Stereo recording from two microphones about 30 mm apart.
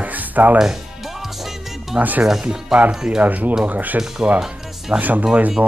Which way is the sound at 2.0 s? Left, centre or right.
Right.